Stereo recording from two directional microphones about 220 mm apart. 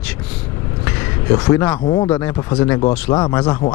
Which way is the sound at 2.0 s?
10° left (ahead or behind).